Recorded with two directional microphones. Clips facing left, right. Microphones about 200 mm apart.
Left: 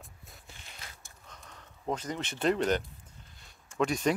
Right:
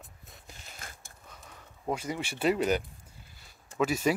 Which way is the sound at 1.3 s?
10° right (ahead or behind).